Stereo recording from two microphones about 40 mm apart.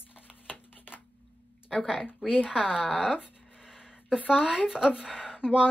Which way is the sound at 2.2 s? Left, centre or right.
Centre.